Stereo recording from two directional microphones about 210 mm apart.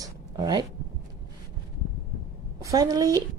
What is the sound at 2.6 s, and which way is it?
Speech, 15° right (ahead or behind).